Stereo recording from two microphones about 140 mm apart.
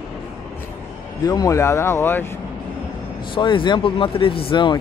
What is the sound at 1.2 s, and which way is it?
Speech, 25° left (ahead or behind).